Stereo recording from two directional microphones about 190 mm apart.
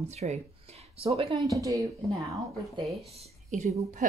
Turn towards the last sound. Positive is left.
turn(degrees=-40)  # may be behind; listen again after turning